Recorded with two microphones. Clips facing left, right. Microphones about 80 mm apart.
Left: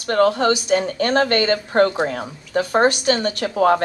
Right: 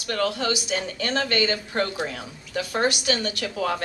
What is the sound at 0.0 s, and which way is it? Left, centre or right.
A woman's voice, left.